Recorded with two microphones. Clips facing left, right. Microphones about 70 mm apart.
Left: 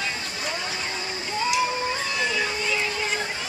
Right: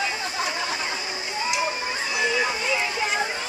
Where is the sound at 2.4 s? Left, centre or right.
Centre.